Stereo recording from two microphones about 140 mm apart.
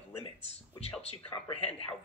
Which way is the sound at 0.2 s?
45° left (ahead or behind).